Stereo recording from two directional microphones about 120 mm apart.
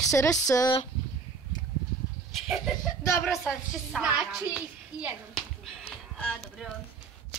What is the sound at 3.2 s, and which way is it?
A child's voice, centre (ahead or behind).